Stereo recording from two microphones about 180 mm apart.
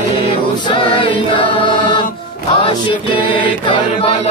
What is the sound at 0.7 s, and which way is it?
Chant, 30° left (ahead or behind).